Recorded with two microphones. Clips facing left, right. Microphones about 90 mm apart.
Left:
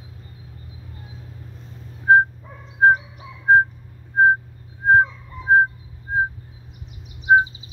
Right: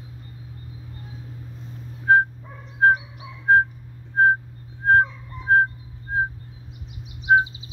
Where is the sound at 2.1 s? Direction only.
20° left (ahead or behind).